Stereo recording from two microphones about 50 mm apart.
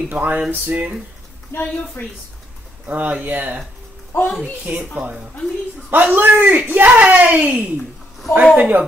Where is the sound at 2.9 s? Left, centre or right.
Right.